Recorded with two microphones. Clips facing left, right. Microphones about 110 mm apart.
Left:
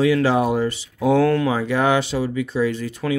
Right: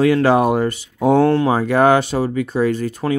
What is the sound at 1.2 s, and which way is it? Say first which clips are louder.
Speech: right 4 dB; 30° right (ahead or behind).